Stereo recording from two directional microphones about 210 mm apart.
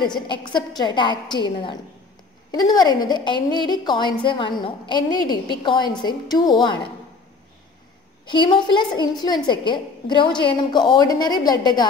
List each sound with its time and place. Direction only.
0.3 s a woman's voice: 20° left (ahead or behind)
8.3 s a woman's voice: 20° left (ahead or behind)